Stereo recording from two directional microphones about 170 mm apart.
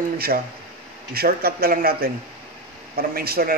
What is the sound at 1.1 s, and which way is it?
A man's voice, 60° right (ahead or behind).